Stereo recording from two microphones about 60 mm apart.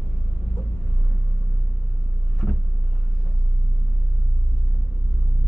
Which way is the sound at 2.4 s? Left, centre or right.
Centre.